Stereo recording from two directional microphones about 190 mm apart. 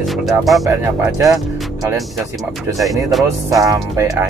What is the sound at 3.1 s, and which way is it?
Speech, centre (ahead or behind).